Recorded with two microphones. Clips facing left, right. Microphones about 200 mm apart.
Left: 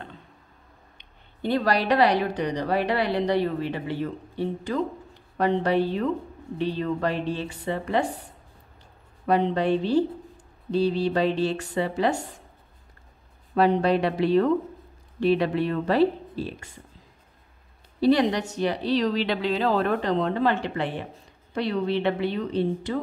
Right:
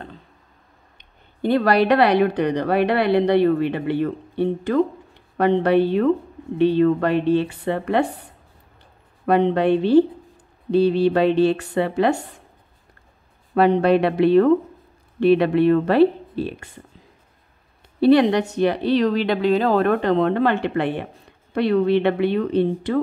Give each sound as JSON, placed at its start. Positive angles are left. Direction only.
{"t": 0.9, "sound": "speech", "side_deg": -50}
{"t": 9.2, "sound": "speech", "side_deg": -60}
{"t": 13.6, "sound": "speech", "side_deg": -60}
{"t": 18.0, "sound": "speech", "side_deg": -60}